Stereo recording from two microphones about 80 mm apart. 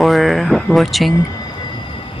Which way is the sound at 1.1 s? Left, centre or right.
Left.